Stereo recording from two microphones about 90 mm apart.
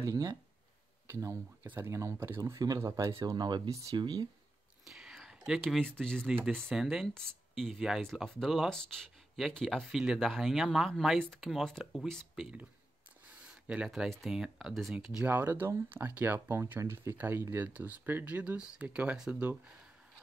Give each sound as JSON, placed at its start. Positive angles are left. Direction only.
{"t": 0.0, "sound": "speech", "side_deg": -45}
{"t": 1.0, "sound": "speech", "side_deg": -30}
{"t": 3.3, "sound": "speech", "side_deg": -50}
{"t": 4.8, "sound": "whispering", "side_deg": -5}
{"t": 5.9, "sound": "speech", "side_deg": 5}
{"t": 6.7, "sound": "speech", "side_deg": -5}
{"t": 8.6, "sound": "speech", "side_deg": 5}
{"t": 13.7, "sound": "speech", "side_deg": -5}
{"t": 15.2, "sound": "speech", "side_deg": -20}